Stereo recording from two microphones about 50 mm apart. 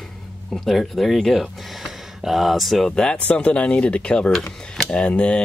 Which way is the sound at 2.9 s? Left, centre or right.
Centre.